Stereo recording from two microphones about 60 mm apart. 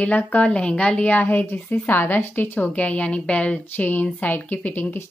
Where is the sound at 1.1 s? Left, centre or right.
Left.